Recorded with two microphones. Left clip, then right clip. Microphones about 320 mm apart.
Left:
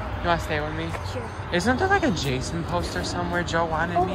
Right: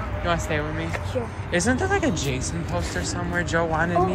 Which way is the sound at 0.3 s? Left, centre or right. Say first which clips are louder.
Left 1 dB; centre.